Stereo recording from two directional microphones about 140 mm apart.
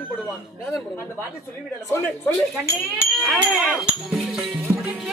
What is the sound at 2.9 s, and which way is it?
Speech, 5° right (ahead or behind).